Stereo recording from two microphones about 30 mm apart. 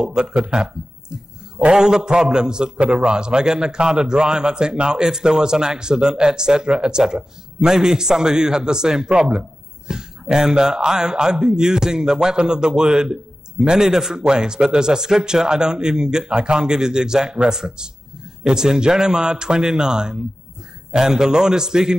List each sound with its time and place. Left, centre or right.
0.0 s a man's voice: right
1.7 s a man's voice: right